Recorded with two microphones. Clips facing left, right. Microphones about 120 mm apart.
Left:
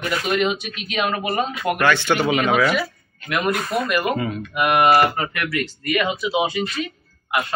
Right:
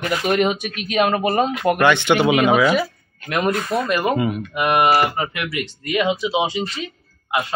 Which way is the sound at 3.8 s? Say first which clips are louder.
Right 2 dB; 30° right (ahead or behind).